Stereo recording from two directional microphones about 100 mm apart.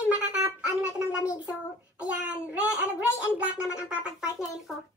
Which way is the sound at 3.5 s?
30° left (ahead or behind).